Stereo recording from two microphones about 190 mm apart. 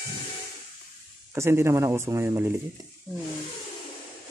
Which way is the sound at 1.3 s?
15° right (ahead or behind).